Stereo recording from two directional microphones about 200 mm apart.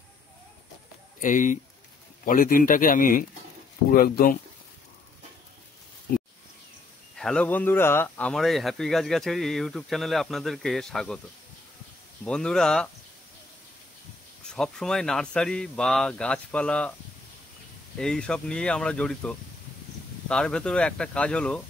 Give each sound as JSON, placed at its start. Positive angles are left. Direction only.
{"t": 1.2, "sound": "speech", "side_deg": 40}
{"t": 7.2, "sound": "speech", "side_deg": 5}
{"t": 12.3, "sound": "speech", "side_deg": 5}
{"t": 14.5, "sound": "speech", "side_deg": 5}
{"t": 17.9, "sound": "speech", "side_deg": 5}